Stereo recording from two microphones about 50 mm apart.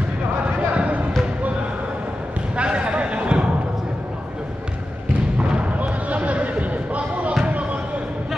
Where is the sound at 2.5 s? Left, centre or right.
Right.